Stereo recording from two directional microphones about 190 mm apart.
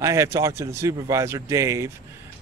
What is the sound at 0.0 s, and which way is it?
Speech, 15° right (ahead or behind).